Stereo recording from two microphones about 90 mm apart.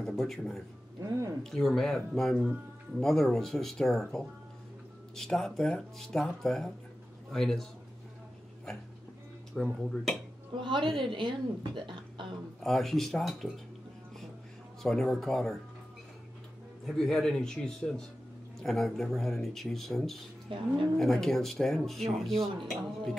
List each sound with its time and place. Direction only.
0.0 s speech: 5° left (ahead or behind)
1.0 s speech: 40° right (ahead or behind)
1.4 s speech: 5° left (ahead or behind)
2.3 s speech: 10° right (ahead or behind)
3.0 s speech: 5° left (ahead or behind)
9.5 s speech: 5° left (ahead or behind)
10.6 s a woman's voice: 60° right (ahead or behind)
12.6 s speech: 5° left (ahead or behind)
14.8 s speech: 5° left (ahead or behind)
16.8 s a man's voice: 5° left (ahead or behind)
20.4 s a woman's voice: 70° right (ahead or behind)
21.0 s speech: 5° left (ahead or behind)